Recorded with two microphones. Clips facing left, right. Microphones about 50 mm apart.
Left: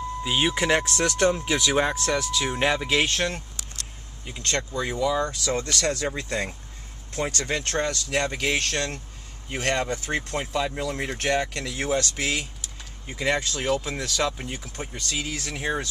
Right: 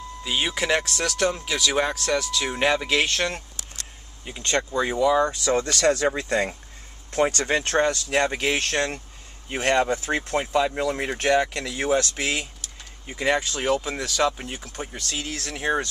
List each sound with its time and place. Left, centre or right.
0.2 s speech: centre
0.8 s speech: left; by 3.3 s centre
4.3 s speech: centre
5.5 s speech: right
7.1 s speech: right
7.6 s speech: centre